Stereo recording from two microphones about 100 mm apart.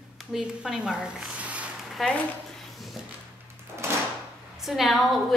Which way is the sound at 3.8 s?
25° right (ahead or behind).